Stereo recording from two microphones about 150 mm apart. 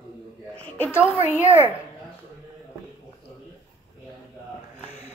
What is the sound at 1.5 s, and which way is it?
Speech, 15° right (ahead or behind).